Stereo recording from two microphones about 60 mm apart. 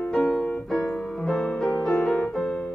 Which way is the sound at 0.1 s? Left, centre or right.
Centre.